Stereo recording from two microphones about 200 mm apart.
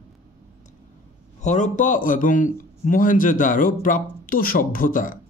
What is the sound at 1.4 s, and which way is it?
A man's voice, 35° left (ahead or behind).